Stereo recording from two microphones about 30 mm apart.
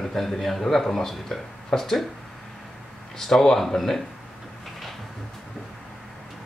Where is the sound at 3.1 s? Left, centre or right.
Centre.